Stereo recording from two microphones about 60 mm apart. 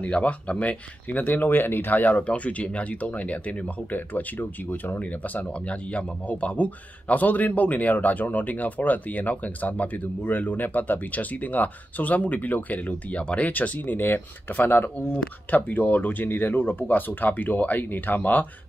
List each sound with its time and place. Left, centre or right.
0.0 s speech: left